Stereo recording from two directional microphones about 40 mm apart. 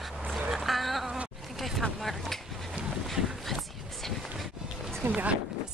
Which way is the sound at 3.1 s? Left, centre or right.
Centre.